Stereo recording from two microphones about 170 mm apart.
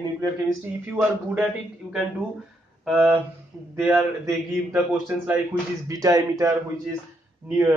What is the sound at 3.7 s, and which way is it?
A man's voice, 10° right (ahead or behind).